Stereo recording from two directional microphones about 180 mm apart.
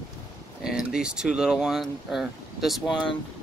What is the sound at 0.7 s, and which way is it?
Speech, 5° right (ahead or behind).